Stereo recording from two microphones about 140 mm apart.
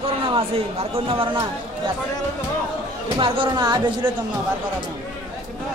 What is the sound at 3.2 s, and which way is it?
Speech, 35° right (ahead or behind).